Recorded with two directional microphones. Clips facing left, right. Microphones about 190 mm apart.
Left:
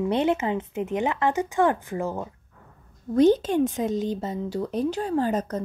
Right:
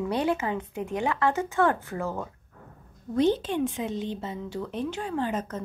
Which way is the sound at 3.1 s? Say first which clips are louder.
Left 5 dB; 45° left (ahead or behind).